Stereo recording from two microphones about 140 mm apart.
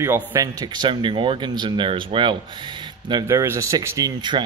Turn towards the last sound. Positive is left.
turn(degrees=-30)  # may be behind; listen again after turning